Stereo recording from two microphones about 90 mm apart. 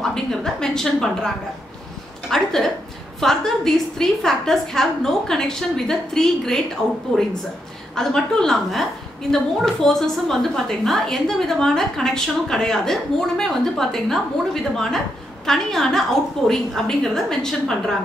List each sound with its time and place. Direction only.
0.0 s a woman's voice: 5° left (ahead or behind)